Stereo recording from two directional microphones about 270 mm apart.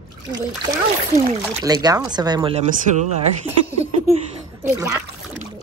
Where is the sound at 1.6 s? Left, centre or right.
Centre.